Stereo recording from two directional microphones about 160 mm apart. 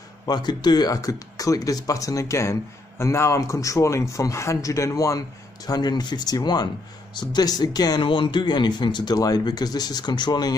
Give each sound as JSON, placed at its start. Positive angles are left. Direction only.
{"t": 0.3, "sound": "speech", "side_deg": 25}